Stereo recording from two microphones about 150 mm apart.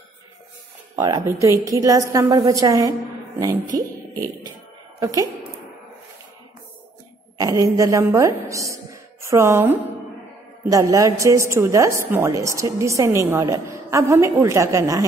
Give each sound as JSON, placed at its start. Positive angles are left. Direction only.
{"t": 1.0, "sound": "a woman's voice", "side_deg": -20}
{"t": 3.6, "sound": "speech", "side_deg": -60}
{"t": 5.0, "sound": "a woman's voice", "side_deg": -25}
{"t": 7.3, "sound": "a woman's voice", "side_deg": -20}